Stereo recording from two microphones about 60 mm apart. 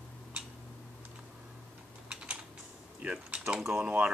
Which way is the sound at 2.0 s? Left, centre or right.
Centre.